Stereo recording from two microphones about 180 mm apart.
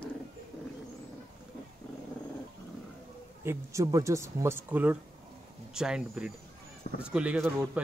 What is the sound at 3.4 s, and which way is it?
Speech, 15° right (ahead or behind).